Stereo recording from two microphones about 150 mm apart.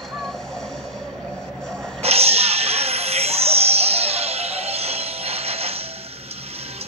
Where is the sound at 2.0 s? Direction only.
45° right (ahead or behind).